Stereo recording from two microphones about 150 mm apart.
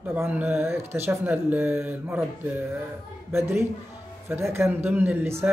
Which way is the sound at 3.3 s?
15° right (ahead or behind).